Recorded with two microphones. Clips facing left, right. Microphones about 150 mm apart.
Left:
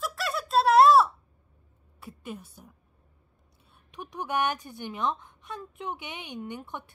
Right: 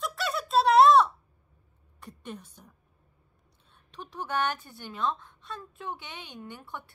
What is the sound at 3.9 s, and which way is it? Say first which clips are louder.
A woman's voice: left 2 dB; 15° left (ahead or behind).